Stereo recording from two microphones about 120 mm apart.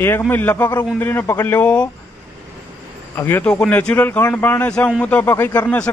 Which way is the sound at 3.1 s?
20° left (ahead or behind).